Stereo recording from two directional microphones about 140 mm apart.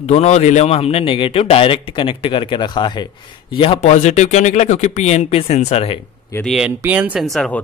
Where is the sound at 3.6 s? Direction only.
45° left (ahead or behind).